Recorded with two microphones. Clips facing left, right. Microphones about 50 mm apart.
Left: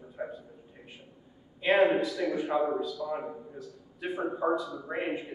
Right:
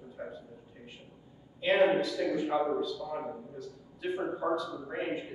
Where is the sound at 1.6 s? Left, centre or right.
Centre.